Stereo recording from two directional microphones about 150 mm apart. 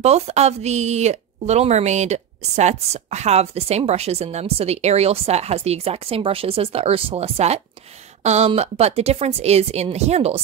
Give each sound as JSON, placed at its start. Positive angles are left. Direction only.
{"t": 0.0, "sound": "speech", "side_deg": -45}